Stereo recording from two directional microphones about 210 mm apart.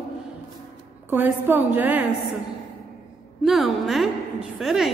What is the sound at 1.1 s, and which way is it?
A woman's voice, 10° right (ahead or behind).